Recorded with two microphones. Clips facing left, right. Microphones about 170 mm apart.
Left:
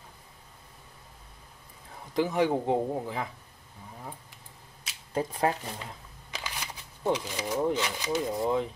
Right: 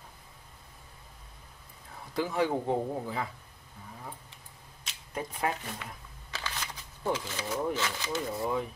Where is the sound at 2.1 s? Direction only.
20° left (ahead or behind).